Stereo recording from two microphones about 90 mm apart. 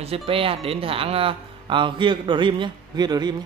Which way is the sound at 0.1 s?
90° right.